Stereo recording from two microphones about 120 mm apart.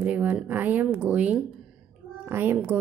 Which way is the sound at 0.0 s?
10° right (ahead or behind).